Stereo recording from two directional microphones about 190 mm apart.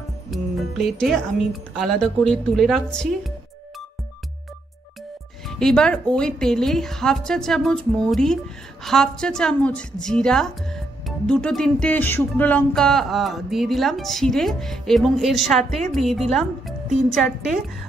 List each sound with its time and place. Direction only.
0.3 s a woman's voice: centre (ahead or behind)
5.5 s a woman's voice: 5° left (ahead or behind)